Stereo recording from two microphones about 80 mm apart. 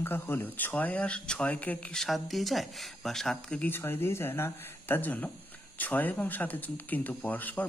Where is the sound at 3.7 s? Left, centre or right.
Left.